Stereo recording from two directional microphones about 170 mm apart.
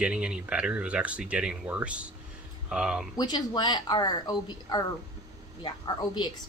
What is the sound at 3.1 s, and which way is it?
A woman's voice, 25° left (ahead or behind).